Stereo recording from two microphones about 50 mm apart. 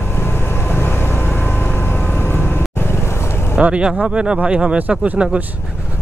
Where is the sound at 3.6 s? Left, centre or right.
Right.